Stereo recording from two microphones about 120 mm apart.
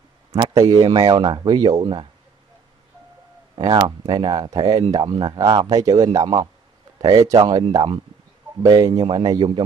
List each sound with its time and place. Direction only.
0.6 s speech: 35° right (ahead or behind)
3.8 s speech: 40° right (ahead or behind)
7.6 s speech: 45° right (ahead or behind)
8.6 s speech: 30° right (ahead or behind)
9.0 s speech: 45° right (ahead or behind)